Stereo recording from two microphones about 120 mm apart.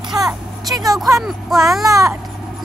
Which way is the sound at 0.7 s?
30° right (ahead or behind).